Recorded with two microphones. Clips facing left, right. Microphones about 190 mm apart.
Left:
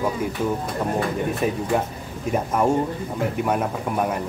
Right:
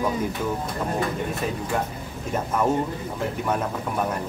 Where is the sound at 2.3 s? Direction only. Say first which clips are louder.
Left 2 dB; 10° left (ahead or behind).